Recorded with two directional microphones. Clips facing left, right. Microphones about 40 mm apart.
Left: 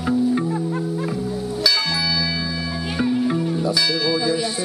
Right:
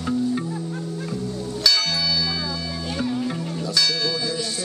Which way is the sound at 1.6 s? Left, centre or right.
Centre.